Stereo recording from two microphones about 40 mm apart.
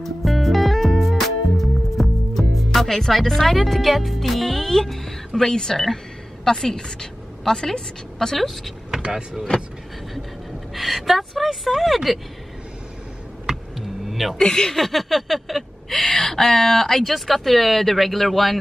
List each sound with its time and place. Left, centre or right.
0.0 s music: centre
6.4 s a woman's voice: centre
9.0 s speech: centre
10.7 s speech: centre
13.7 s a sound: centre
14.4 s speech: centre
14.8 s speech: centre
15.9 s speech: centre